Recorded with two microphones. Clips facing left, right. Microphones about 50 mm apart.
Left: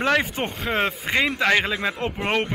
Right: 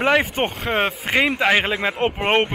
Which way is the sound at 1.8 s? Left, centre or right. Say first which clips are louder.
Right 4 dB; right.